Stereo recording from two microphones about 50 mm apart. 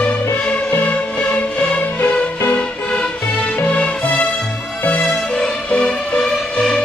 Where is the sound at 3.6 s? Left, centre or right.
Left.